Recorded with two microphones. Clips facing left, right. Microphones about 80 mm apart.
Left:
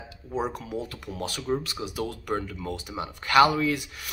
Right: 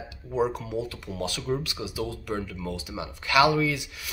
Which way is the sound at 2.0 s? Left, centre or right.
Left.